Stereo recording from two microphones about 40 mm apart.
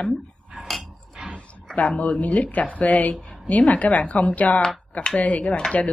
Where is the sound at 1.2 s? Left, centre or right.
Centre.